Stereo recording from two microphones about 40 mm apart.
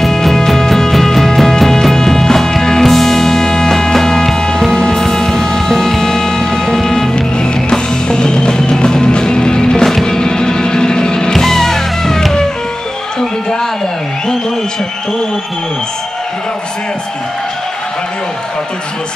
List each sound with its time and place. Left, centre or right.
0.0 s music: centre
11.3 s music: centre